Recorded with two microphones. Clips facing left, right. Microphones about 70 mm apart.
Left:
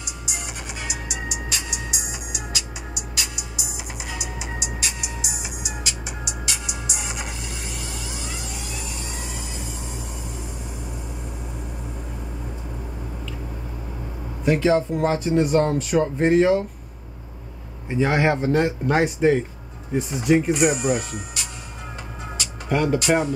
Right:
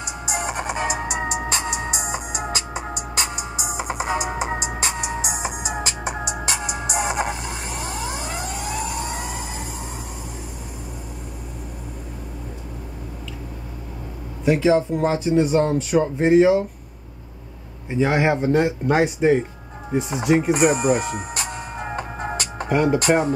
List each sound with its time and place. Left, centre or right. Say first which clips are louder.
0.0 s music: right 8 dB; right
14.4 s speech: right 2 dB; centre
17.8 s speech: right 1 dB; centre
20.5 s music: right 3 dB; right
22.7 s speech: right 2 dB; centre